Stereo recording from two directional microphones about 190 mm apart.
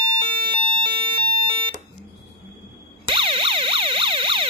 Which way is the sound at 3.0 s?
25° right (ahead or behind).